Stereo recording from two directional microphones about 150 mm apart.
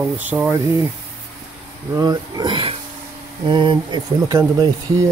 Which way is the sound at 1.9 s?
25° right (ahead or behind).